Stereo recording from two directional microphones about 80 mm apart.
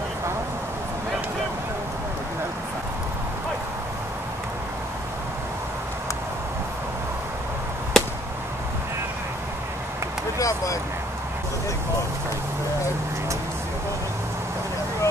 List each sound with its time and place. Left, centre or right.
8.0 s chop: centre
10.4 s speech: left